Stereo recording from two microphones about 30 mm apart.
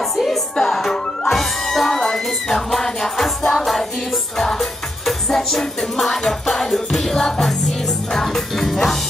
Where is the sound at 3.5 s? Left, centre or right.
Centre.